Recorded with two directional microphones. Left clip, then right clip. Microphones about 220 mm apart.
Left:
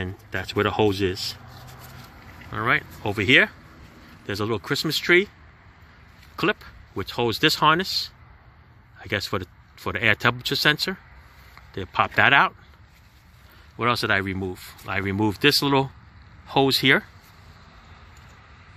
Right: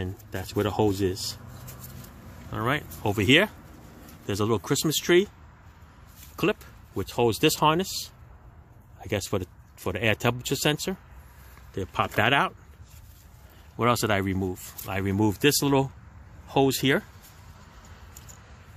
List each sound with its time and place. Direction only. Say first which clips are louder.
0.0 s speech: left 5 dB; centre (ahead or behind)
2.5 s speech: left 5 dB; 15° right (ahead or behind)
6.3 s speech: left 3 dB; 10° right (ahead or behind)
13.7 s speech: left 2 dB; 20° right (ahead or behind); by 17.0 s 5° right (ahead or behind)